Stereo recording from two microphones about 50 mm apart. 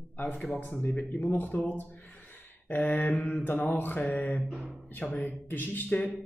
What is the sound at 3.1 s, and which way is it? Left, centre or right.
Speech, left.